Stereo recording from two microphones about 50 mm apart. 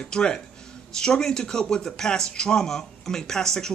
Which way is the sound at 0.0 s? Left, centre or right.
Centre.